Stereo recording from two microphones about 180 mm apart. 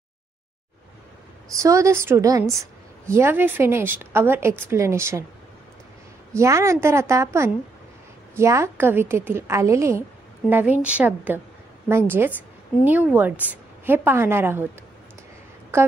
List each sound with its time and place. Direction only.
1.6 s speech: 15° right (ahead or behind)
6.3 s a woman's voice: 15° right (ahead or behind)
15.7 s a woman's voice: 15° right (ahead or behind)